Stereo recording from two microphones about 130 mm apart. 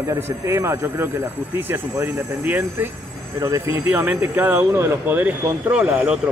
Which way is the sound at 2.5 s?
15° right (ahead or behind).